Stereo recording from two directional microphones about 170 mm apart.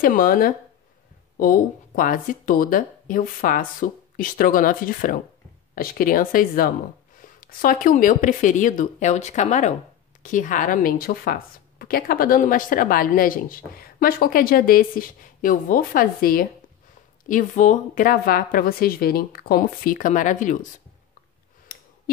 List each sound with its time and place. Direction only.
0.0 s a woman's voice: 55° left (ahead or behind)
17.3 s a woman's voice: 50° left (ahead or behind)
21.7 s clicking: 60° left (ahead or behind)